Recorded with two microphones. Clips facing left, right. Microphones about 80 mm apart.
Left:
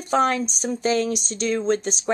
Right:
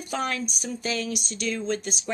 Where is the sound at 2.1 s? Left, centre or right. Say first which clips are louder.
Left 7 dB; left.